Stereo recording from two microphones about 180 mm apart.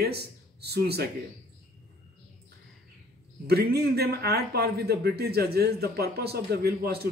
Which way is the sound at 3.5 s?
60° right (ahead or behind).